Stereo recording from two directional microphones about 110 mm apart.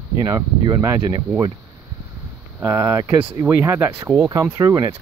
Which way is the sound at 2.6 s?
25° right (ahead or behind).